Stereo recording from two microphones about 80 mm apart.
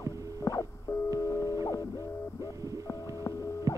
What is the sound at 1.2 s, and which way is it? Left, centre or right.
Music, left.